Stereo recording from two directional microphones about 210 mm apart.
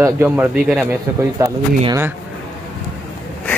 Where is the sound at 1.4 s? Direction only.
15° right (ahead or behind).